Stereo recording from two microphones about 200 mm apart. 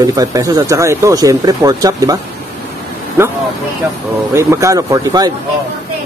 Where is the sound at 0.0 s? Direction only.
15° right (ahead or behind).